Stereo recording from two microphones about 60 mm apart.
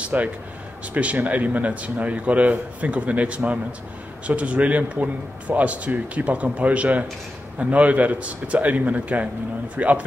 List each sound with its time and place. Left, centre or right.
0.0 s a man's voice: right